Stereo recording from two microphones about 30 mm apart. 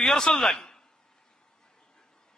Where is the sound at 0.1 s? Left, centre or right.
Left.